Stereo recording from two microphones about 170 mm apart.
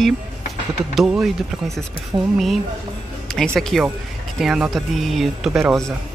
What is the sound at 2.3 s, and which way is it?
Speech, centre (ahead or behind).